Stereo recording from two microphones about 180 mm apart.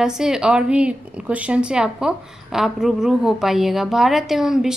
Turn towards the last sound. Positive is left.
turn(degrees=0)  # may be behind; listen again after turning